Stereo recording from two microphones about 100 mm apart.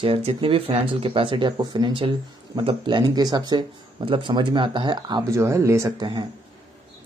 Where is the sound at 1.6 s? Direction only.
45° right (ahead or behind).